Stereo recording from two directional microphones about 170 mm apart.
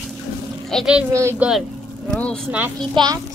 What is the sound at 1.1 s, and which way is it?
Speech, 15° right (ahead or behind).